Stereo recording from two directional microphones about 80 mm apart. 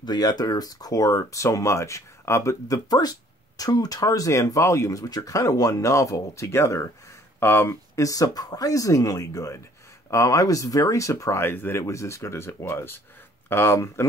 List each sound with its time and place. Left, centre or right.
0.0 s speech: left
2.9 s speech: left
11.4 s speech: left